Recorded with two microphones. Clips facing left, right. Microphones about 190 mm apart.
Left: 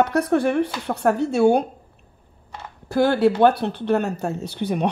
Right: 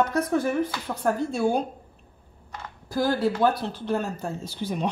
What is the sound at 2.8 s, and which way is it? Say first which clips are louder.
Speech: left 6 dB; 65° left (ahead or behind).